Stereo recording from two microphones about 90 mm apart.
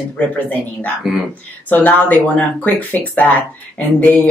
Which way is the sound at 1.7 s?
20° left (ahead or behind).